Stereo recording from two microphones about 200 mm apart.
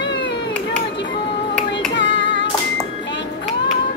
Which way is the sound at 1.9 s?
65° left (ahead or behind).